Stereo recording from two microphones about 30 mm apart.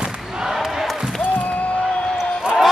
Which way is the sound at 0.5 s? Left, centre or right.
Centre.